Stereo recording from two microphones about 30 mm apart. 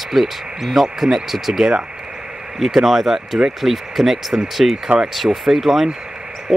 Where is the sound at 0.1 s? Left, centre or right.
Centre.